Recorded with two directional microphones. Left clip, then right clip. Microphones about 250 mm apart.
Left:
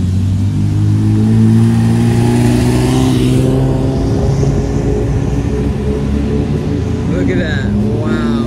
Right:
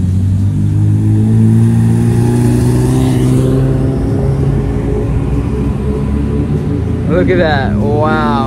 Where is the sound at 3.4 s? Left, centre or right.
Right.